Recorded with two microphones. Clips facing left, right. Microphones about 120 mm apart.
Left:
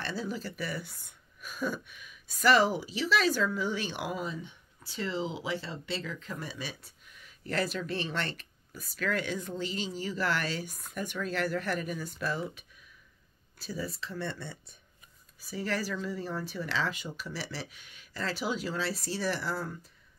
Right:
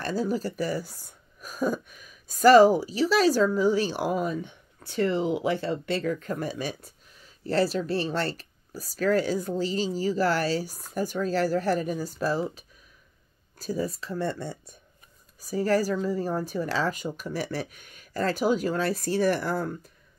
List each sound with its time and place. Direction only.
0.0 s speech: 40° right (ahead or behind)